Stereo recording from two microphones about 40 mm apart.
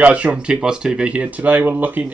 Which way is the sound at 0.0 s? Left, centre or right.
Right.